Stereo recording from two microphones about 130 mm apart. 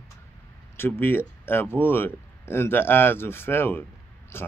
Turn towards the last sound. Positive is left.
turn(degrees=20)  # may be behind; listen again after turning